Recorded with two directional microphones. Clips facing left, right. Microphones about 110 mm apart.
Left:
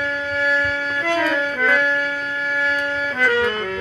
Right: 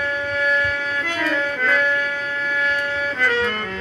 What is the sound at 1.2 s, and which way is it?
Music, 10° left (ahead or behind).